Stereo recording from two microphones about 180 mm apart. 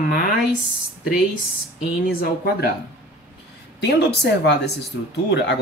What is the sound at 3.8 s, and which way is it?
Speech, 70° left (ahead or behind).